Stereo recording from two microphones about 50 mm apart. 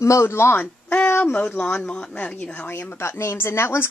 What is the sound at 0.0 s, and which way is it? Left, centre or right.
Speech, left.